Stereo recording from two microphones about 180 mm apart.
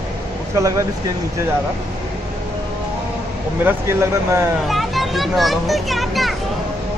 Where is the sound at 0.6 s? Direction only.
15° right (ahead or behind).